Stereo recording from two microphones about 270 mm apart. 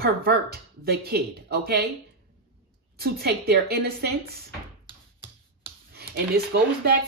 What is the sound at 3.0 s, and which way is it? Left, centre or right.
Speech, right.